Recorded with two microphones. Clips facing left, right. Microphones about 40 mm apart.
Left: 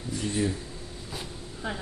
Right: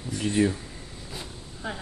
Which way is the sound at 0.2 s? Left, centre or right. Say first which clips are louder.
Right 5 dB; right.